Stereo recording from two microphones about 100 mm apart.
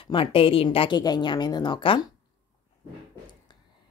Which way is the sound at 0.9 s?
45° left (ahead or behind).